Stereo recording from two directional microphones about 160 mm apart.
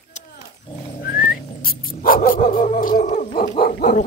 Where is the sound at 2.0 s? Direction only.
60° left (ahead or behind).